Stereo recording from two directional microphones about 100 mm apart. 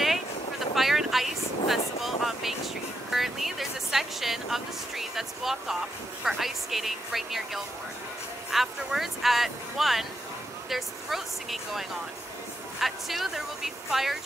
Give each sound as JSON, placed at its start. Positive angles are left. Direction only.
{"t": 0.7, "sound": "speech", "side_deg": 0}
{"t": 12.8, "sound": "speech", "side_deg": 0}